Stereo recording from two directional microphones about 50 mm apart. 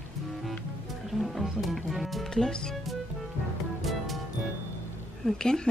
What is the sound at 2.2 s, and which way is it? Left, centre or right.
Speech, centre.